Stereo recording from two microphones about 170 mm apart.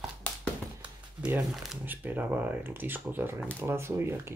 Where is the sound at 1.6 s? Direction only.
10° right (ahead or behind).